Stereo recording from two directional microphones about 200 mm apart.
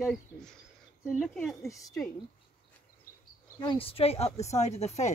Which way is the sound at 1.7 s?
15° left (ahead or behind).